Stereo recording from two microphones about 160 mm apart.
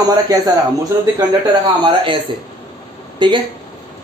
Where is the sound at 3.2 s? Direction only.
30° right (ahead or behind).